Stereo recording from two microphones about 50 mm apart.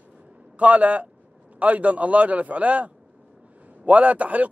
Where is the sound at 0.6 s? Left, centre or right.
Right.